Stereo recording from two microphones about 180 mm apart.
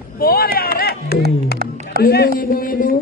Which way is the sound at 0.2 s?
55° left (ahead or behind).